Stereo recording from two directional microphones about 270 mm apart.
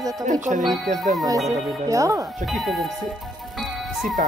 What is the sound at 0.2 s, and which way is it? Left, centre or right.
Speech, right.